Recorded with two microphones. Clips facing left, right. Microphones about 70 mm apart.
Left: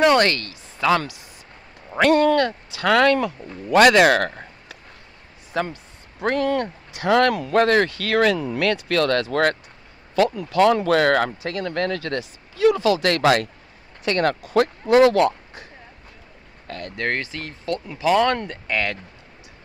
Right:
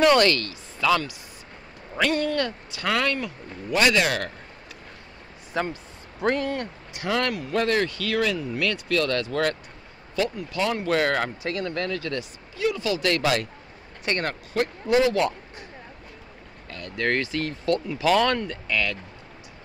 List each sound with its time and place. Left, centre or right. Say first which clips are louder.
0.2 s speech: left 1 dB; left
2.0 s speech: left 8 dB; left
5.5 s speech: left 2 dB; left
10.1 s speech: left 8 dB; left
14.9 s speech: left 6 dB; left
16.6 s speech: left 6 dB; left
16.9 s speech: right 1 dB; left
17.4 s speech: right 3 dB; centre
18.4 s speech: left 2 dB; left